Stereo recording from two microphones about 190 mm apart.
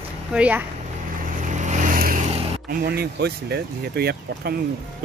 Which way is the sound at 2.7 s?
55° right (ahead or behind).